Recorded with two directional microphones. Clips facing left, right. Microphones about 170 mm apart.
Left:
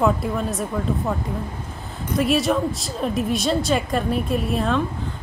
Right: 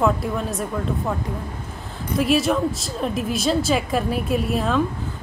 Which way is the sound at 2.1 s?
Centre (ahead or behind).